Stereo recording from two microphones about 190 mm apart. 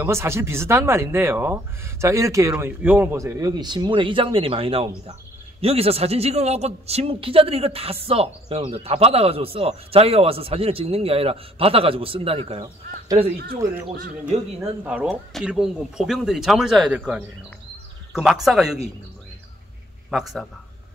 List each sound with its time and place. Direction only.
0.0 s a man's voice: 15° right (ahead or behind)
14.2 s speech: 10° right (ahead or behind)
20.1 s speech: centre (ahead or behind)